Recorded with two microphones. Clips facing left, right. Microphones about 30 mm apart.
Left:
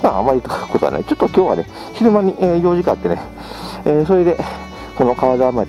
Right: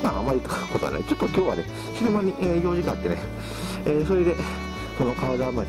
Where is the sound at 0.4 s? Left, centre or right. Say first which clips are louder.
Left 7 dB; left.